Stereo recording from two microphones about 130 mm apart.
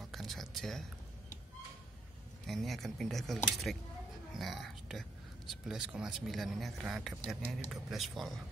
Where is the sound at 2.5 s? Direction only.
Centre (ahead or behind).